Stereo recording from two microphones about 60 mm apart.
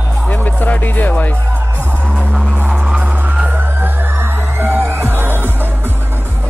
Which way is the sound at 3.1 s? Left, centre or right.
Right.